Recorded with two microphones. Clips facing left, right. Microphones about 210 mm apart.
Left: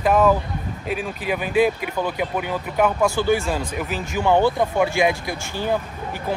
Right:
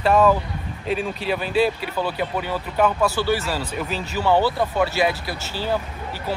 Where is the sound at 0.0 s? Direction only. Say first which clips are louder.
Even; 10° left (ahead or behind).